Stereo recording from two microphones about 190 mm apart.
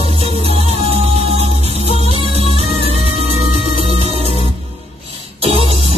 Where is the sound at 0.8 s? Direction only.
30° right (ahead or behind).